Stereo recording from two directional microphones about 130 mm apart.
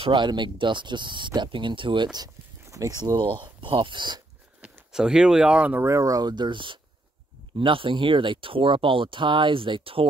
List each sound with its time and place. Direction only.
0.0 s speech: 35° right (ahead or behind)
2.1 s speech: 25° right (ahead or behind)
4.6 s speech: 10° right (ahead or behind); by 10.0 s 40° right (ahead or behind)